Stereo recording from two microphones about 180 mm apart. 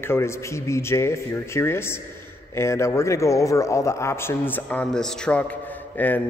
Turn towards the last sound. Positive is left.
turn(degrees=10)  # may be behind; listen again after turning